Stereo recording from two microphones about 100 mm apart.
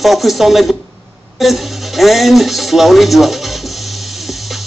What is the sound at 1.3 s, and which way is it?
Speech, centre (ahead or behind).